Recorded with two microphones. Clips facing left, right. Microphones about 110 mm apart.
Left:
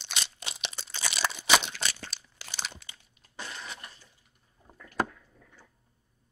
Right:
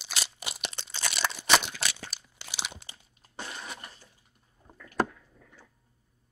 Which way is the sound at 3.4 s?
10° right (ahead or behind).